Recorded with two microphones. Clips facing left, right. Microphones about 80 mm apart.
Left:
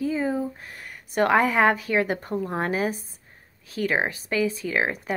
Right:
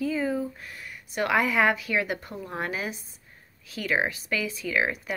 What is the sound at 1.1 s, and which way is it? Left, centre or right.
Speech, left.